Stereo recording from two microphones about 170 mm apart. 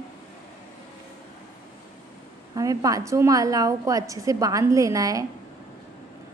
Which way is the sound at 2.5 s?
20° right (ahead or behind).